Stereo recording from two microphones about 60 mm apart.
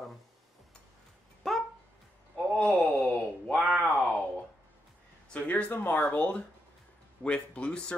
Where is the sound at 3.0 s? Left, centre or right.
Left.